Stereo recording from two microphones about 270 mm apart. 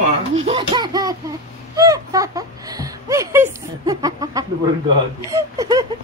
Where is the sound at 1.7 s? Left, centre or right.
Centre.